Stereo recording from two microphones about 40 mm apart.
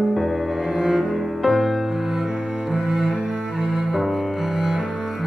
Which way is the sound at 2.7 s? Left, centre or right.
Centre.